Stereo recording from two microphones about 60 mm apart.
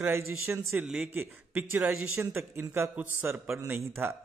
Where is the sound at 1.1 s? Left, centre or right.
Right.